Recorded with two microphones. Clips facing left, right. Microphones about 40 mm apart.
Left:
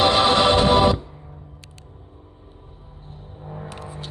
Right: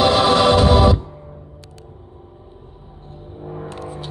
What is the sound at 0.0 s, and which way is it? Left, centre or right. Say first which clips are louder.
Music: right 2 dB; left.